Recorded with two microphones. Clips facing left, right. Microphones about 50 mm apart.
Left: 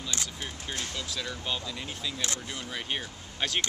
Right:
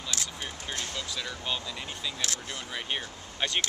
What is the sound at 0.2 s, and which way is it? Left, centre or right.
Speech, centre.